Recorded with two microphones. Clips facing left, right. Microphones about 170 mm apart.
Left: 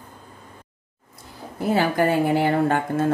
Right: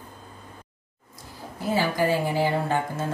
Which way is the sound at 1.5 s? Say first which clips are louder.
Left 4 dB; 55° left (ahead or behind).